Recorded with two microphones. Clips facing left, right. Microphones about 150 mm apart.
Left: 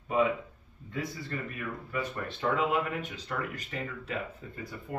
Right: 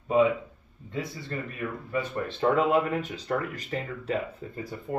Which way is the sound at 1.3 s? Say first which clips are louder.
Right 6 dB; 30° right (ahead or behind).